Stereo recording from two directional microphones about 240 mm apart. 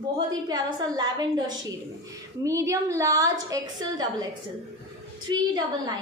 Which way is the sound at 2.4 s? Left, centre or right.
Centre.